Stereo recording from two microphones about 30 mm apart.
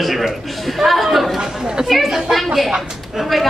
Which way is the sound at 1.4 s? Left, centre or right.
Right.